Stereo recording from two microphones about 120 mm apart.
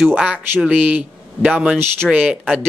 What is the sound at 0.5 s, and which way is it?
Speech, 10° right (ahead or behind).